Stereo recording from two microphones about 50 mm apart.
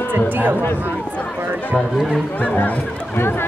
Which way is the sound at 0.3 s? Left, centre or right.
Right.